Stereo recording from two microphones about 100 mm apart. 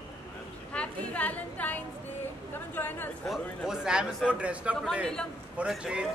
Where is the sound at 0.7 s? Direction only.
15° left (ahead or behind).